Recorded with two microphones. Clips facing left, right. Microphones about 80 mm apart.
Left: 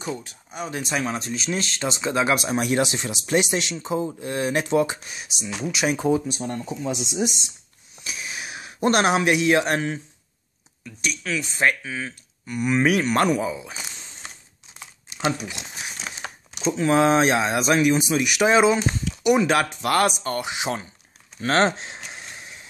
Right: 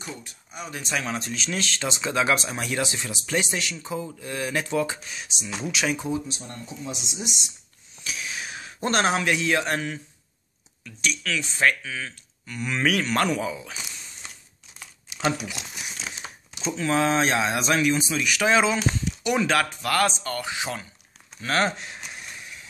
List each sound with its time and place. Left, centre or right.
0.0 s speech: left
0.8 s speech: centre
2.5 s speech: centre
3.7 s speech: left; by 5.9 s centre
6.0 s speech: left
8.0 s a sound: centre
9.8 s speech: left
11.0 s speech: centre
11.6 s speech: centre
15.4 s speech: left
16.0 s crumpling: left
16.7 s speech: centre
19.8 s speech: left
21.4 s a sound: left